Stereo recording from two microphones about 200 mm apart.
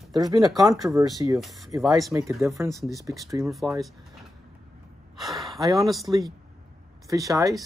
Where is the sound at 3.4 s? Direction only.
Centre (ahead or behind).